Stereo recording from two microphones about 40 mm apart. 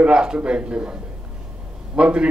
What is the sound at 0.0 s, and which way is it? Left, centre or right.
Speech, right.